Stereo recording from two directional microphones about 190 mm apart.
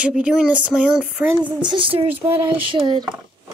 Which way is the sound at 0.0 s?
5° right (ahead or behind).